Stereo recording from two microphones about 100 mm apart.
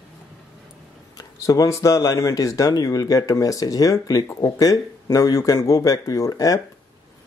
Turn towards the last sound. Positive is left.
turn(degrees=35)  # may be behind; listen again after turning